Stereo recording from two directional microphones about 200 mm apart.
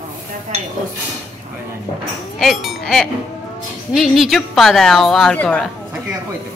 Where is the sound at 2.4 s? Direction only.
Centre (ahead or behind).